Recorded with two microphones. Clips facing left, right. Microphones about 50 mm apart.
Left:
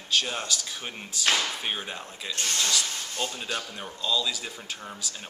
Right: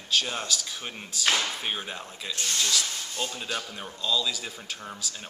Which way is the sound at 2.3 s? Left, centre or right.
Left.